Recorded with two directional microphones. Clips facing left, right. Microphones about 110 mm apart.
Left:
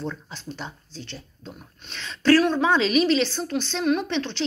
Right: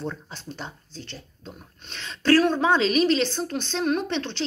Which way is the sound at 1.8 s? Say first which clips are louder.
Even; 40° right (ahead or behind).